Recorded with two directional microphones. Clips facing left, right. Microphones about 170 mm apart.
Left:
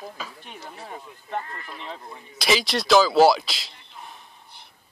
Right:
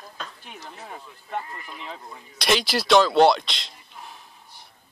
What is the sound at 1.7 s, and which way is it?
Speech, centre (ahead or behind).